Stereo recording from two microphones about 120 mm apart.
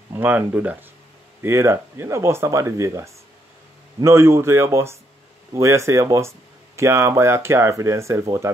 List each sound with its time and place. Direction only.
0.1 s speech: 15° right (ahead or behind)